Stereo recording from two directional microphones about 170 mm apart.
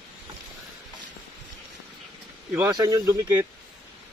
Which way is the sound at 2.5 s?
20° right (ahead or behind).